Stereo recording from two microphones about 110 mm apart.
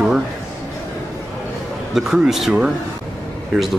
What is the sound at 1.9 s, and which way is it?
Speech, 5° right (ahead or behind).